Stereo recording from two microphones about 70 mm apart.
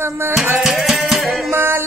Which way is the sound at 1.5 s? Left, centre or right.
Right.